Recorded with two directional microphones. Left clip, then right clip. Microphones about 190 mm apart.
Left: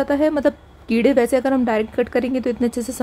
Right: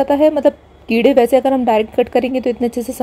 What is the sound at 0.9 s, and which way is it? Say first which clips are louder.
Speech: right 5 dB; 45° left (ahead or behind).